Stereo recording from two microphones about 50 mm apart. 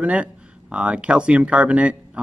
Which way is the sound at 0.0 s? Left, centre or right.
Right.